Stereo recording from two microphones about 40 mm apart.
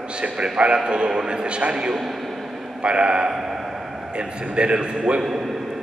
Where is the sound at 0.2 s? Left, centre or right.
Right.